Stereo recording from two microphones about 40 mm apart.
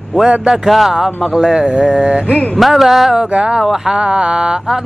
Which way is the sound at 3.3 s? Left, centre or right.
Right.